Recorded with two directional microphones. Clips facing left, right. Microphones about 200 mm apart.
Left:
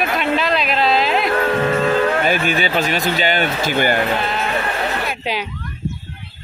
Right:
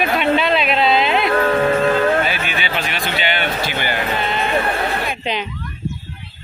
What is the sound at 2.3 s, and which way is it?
Speech, 40° left (ahead or behind).